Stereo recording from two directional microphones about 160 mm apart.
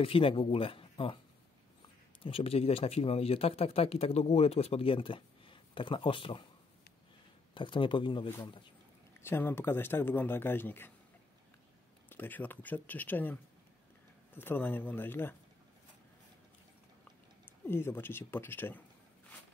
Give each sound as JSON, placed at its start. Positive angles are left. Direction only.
{"t": 0.0, "sound": "speech", "side_deg": 35}
{"t": 2.2, "sound": "speech", "side_deg": 35}
{"t": 7.5, "sound": "speech", "side_deg": 30}
{"t": 9.2, "sound": "a man's voice", "side_deg": 15}
{"t": 12.1, "sound": "a man's voice", "side_deg": 10}
{"t": 17.6, "sound": "a man's voice", "side_deg": 15}